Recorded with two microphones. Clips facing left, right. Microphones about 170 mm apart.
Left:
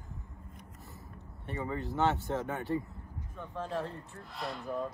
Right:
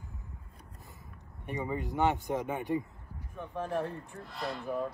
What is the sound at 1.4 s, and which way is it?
Speech, 15° right (ahead or behind).